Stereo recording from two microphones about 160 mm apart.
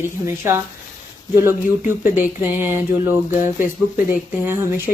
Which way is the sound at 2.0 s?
10° right (ahead or behind).